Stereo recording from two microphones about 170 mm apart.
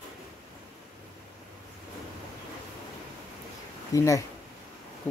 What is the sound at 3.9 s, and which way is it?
Speech, 20° left (ahead or behind).